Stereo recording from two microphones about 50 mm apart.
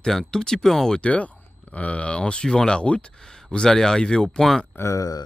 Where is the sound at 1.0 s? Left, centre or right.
Left; by 4.6 s centre.